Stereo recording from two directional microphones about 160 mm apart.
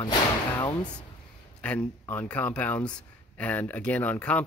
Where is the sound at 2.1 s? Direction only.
10° left (ahead or behind).